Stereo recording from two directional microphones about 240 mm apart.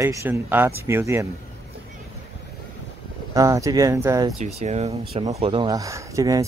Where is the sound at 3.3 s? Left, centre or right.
Centre.